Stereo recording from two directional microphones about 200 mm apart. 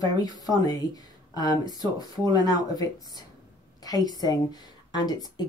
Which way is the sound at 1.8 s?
20° right (ahead or behind).